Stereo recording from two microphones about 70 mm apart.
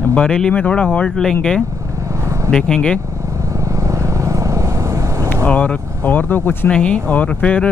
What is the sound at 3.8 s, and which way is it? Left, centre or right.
Vehicle, right.